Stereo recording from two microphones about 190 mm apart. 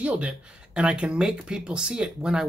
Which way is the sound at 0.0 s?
5° right (ahead or behind).